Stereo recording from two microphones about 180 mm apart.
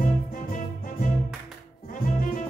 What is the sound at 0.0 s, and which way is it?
Music, 50° left (ahead or behind).